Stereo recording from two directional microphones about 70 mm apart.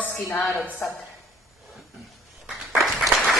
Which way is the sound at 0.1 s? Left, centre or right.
Left.